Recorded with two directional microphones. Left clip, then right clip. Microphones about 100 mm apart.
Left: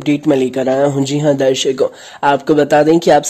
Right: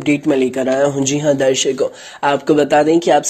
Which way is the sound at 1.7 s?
40° left (ahead or behind).